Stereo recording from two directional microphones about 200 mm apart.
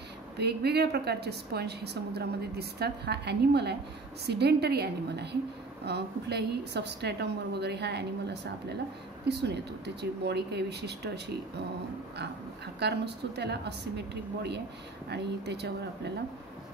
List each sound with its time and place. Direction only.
0.4 s a woman's voice: 55° right (ahead or behind)
12.7 s a woman's voice: 55° right (ahead or behind)